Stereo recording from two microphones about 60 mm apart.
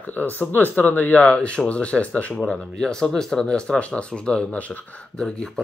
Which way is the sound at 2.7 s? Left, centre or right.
Centre.